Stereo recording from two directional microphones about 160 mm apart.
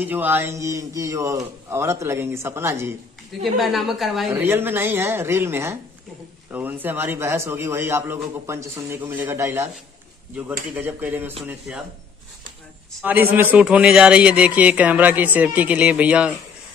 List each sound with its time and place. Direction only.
0.0 s a man's voice: 10° right (ahead or behind)
3.5 s a woman's voice: centre (ahead or behind)
4.3 s a man's voice: 15° right (ahead or behind)
10.7 s a man's voice: 10° right (ahead or behind)
13.0 s a man's voice: 10° right (ahead or behind)